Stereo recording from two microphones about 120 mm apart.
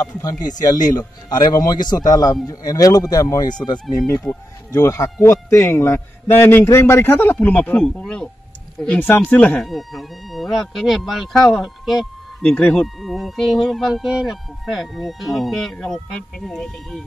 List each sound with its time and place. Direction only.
0.0 s speech: 30° left (ahead or behind)
4.3 s a man's voice: 15° left (ahead or behind)
4.7 s a man's voice: 25° left (ahead or behind)
9.7 s speech: centre (ahead or behind)
12.4 s speech: 10° left (ahead or behind)